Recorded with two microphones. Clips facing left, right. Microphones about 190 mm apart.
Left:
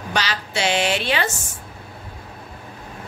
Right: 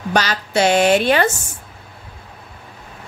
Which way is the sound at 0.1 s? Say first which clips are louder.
Right 6 dB; 45° right (ahead or behind).